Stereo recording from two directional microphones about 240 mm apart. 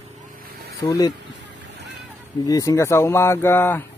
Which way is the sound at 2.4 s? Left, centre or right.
Centre.